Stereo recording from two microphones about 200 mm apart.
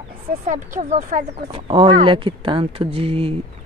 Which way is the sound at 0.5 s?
35° right (ahead or behind).